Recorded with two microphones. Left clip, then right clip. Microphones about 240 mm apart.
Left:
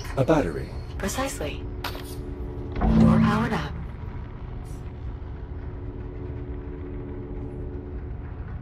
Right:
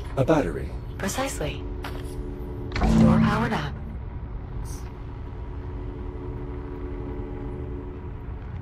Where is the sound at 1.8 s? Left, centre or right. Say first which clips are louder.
Left 2 dB; centre.